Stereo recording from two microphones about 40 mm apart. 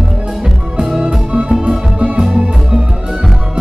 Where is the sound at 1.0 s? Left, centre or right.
Right.